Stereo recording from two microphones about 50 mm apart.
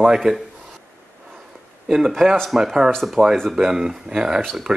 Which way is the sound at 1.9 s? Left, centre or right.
Centre.